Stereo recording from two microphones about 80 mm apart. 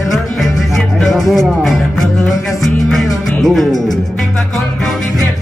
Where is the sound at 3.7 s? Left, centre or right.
Left.